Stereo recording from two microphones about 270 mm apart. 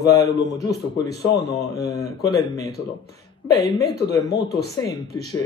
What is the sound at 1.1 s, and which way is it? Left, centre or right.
Speech, left.